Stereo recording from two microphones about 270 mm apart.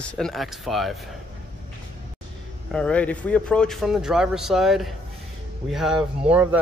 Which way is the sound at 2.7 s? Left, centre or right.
Centre.